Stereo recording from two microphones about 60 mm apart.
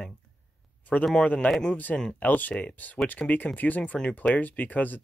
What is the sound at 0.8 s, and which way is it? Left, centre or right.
A man's voice, left.